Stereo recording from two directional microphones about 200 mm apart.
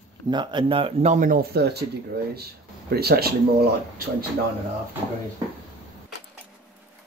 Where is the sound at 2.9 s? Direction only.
50° right (ahead or behind).